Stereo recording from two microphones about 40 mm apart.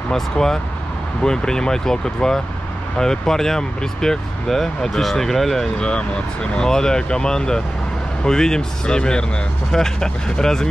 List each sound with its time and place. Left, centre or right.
0.1 s speech: centre
5.8 s speech: left